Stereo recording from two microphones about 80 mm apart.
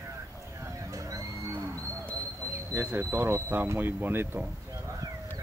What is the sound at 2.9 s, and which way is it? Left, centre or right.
Speech, right.